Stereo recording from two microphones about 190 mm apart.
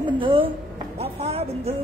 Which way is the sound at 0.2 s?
25° right (ahead or behind).